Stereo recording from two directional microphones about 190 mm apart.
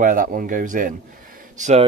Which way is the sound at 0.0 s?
45° right (ahead or behind).